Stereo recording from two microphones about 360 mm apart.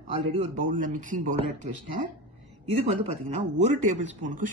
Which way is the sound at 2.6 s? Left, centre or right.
Centre.